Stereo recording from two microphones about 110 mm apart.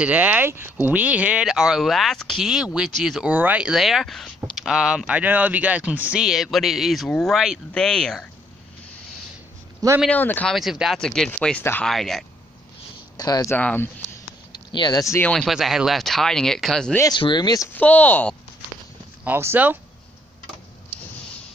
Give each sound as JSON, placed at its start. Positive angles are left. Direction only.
{"t": 0.0, "sound": "speech", "side_deg": -15}
{"t": 3.3, "sound": "speech", "side_deg": -15}
{"t": 10.0, "sound": "speech", "side_deg": 15}
{"t": 10.5, "sound": "speech", "side_deg": -5}
{"t": 13.2, "sound": "speech", "side_deg": 35}
{"t": 13.6, "sound": "speech", "side_deg": 15}
{"t": 14.5, "sound": "a sound", "side_deg": 45}
{"t": 15.0, "sound": "speech", "side_deg": 30}
{"t": 15.2, "sound": "speech", "side_deg": 5}
{"t": 15.5, "sound": "speech", "side_deg": -5}
{"t": 17.1, "sound": "speech", "side_deg": 45}
{"t": 17.7, "sound": "speech", "side_deg": 15}
{"t": 19.2, "sound": "speech", "side_deg": -20}